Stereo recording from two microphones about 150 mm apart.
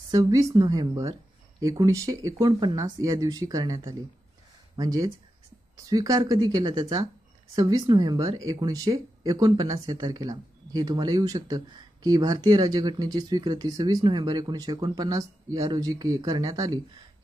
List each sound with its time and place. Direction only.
0.1 s speech: 20° right (ahead or behind)